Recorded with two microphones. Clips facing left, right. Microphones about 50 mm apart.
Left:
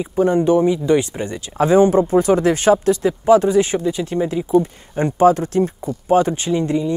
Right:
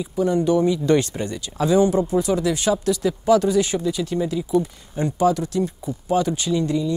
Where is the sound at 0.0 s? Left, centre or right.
Left.